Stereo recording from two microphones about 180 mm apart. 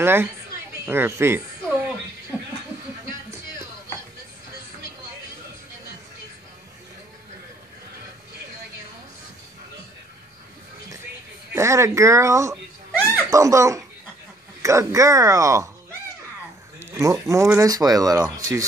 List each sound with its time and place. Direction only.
0.0 s speech: 10° right (ahead or behind)
11.5 s a sound: 15° right (ahead or behind)
14.6 s speech: 15° right (ahead or behind)
16.8 s speech: 15° right (ahead or behind)